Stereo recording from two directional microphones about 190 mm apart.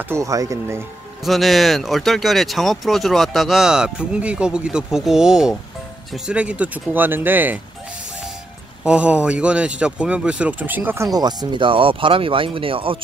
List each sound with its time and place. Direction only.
0.1 s speech: 15° right (ahead or behind)
1.2 s speech: centre (ahead or behind)
8.8 s speech: 5° right (ahead or behind); by 13.0 s 30° right (ahead or behind)